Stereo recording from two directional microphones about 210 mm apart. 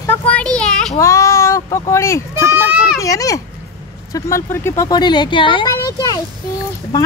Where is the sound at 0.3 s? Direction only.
5° left (ahead or behind).